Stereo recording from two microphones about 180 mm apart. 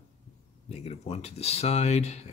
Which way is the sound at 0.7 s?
35° left (ahead or behind).